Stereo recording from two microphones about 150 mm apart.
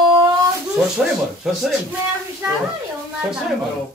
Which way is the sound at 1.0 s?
5° right (ahead or behind).